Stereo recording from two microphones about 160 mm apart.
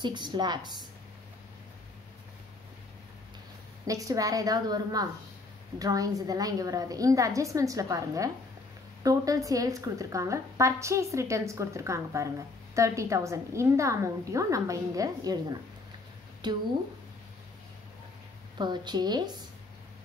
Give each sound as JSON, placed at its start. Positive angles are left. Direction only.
{"t": 0.0, "sound": "a woman's voice", "side_deg": -25}
{"t": 3.8, "sound": "a woman's voice", "side_deg": -20}
{"t": 18.6, "sound": "a woman's voice", "side_deg": -25}